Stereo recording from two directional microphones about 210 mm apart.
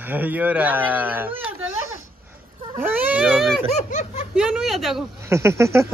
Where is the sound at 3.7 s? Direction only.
35° left (ahead or behind).